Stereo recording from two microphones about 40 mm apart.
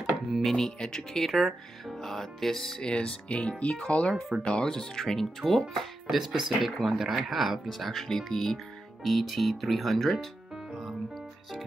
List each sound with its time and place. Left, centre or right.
0.3 s speech: centre
0.6 s speech: centre
2.8 s speech: left
4.1 s speech: centre
4.5 s speech: centre
5.2 s speech: centre
10.7 s music: centre